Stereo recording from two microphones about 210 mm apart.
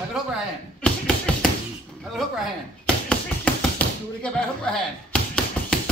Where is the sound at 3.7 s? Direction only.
5° left (ahead or behind).